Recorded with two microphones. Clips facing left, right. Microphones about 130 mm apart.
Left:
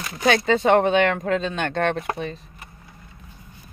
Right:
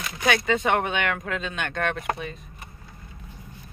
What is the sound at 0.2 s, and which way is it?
Speech, 35° left (ahead or behind).